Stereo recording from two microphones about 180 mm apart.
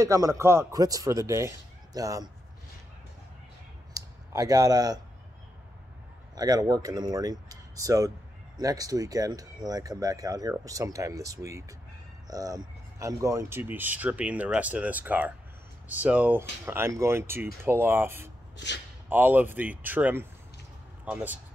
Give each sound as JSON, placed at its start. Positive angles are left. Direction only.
{"t": 0.0, "sound": "speech", "side_deg": -15}
{"t": 3.9, "sound": "a sound", "side_deg": -20}
{"t": 6.3, "sound": "speech", "side_deg": -20}